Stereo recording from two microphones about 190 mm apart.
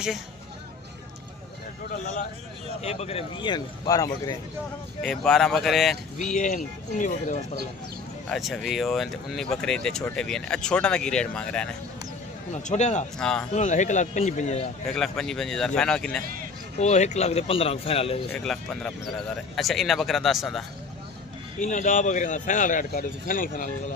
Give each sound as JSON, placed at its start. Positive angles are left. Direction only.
{"t": 2.8, "sound": "a man's voice", "side_deg": 35}
{"t": 5.0, "sound": "speech", "side_deg": 0}
{"t": 6.1, "sound": "a man's voice", "side_deg": 40}
{"t": 8.3, "sound": "speech", "side_deg": 0}
{"t": 12.6, "sound": "a man's voice", "side_deg": 40}
{"t": 13.2, "sound": "speech", "side_deg": 5}
{"t": 13.5, "sound": "a man's voice", "side_deg": 40}
{"t": 14.9, "sound": "speech", "side_deg": 0}
{"t": 16.7, "sound": "a man's voice", "side_deg": 35}
{"t": 18.3, "sound": "speech", "side_deg": 5}
{"t": 21.5, "sound": "speech", "side_deg": 40}